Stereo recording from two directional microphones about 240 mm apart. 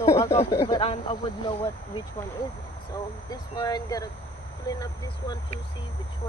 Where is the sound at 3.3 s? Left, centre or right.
Centre.